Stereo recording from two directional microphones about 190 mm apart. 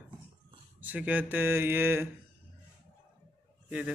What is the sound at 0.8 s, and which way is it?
Speech, 10° right (ahead or behind).